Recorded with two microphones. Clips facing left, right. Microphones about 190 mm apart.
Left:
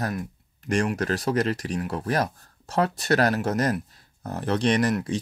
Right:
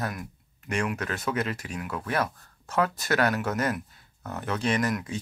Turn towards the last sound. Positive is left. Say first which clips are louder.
# left 4 dB
turn(degrees=35)  # may be behind; listen again after turning